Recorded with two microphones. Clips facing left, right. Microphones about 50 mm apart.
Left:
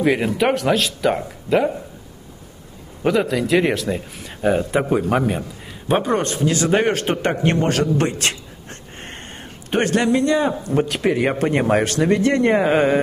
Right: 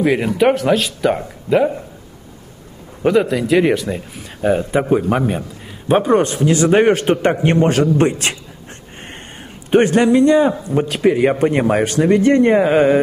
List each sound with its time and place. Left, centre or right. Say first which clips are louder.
0.0 s speech: right 3 dB; centre
3.0 s speech: right 4 dB; centre
9.7 s speech: right 6 dB; centre